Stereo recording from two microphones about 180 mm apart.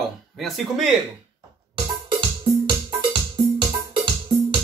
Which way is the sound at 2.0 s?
25° right (ahead or behind).